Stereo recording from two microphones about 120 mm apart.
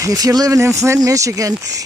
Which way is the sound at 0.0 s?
30° right (ahead or behind).